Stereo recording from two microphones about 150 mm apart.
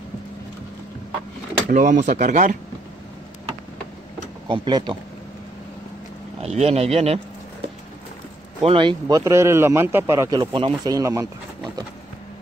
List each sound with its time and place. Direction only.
1.7 s speech: 55° right (ahead or behind)
4.5 s speech: 30° right (ahead or behind)
6.4 s speech: 45° right (ahead or behind)
8.6 s speech: 35° right (ahead or behind)
9.0 s speech: 20° right (ahead or behind)